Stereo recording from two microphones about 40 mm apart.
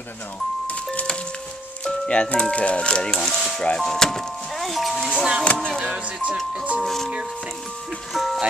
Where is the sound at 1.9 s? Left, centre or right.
Left.